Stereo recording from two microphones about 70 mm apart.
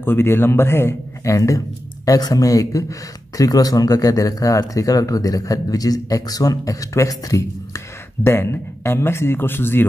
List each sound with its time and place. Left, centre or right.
0.0 s speech: left
2.0 s speech: left
8.2 s speech: left